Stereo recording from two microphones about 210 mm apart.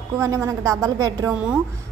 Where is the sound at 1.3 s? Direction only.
5° right (ahead or behind).